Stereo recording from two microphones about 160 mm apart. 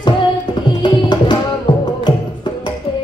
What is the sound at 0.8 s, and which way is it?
Tabla, 30° left (ahead or behind).